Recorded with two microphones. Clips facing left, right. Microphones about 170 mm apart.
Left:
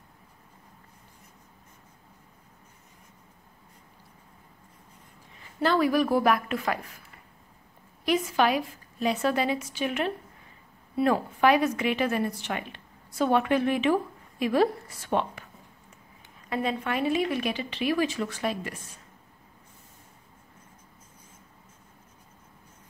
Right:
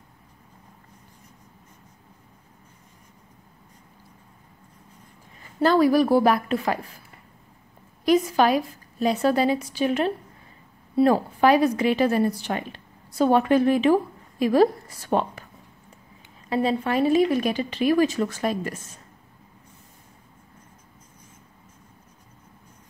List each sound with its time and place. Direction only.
5.6 s a woman's voice: 40° right (ahead or behind)
8.0 s a woman's voice: 40° right (ahead or behind)
16.4 s a woman's voice: 30° right (ahead or behind)